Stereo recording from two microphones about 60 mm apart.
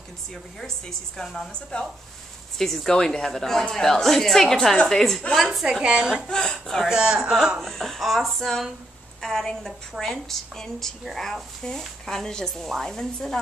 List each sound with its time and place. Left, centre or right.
0.3 s a woman's voice: centre
6.2 s a woman's voice: centre
6.9 s a man's voice: centre
7.6 s a woman's voice: centre